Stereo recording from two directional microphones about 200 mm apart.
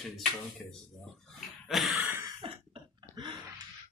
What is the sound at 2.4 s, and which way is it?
Cough, 25° right (ahead or behind).